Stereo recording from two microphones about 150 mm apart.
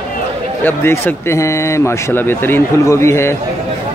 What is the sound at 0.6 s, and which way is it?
A man's voice, 15° left (ahead or behind).